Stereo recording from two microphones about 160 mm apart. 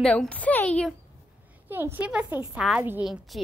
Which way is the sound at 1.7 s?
10° right (ahead or behind).